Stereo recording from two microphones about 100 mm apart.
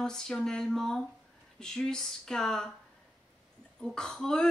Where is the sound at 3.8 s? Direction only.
5° left (ahead or behind).